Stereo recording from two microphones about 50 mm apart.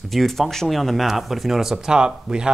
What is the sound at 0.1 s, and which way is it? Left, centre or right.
Speech, centre.